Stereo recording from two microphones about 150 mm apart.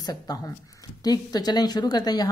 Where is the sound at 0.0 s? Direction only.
25° left (ahead or behind).